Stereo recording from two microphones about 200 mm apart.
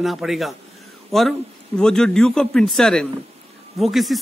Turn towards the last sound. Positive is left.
turn(degrees=0)  # may be behind; listen again after turning